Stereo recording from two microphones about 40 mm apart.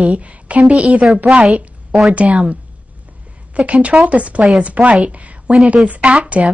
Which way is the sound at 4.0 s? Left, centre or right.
Right.